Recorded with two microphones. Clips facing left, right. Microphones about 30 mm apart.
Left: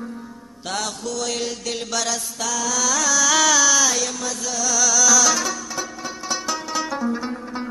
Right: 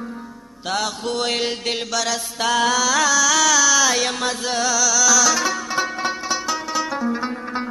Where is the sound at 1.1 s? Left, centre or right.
Right.